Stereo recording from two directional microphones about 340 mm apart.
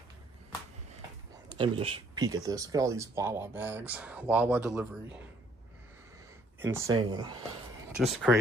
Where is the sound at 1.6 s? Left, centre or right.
Centre.